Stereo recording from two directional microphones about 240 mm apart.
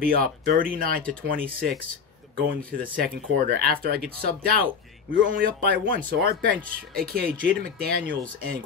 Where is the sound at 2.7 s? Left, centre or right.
Right.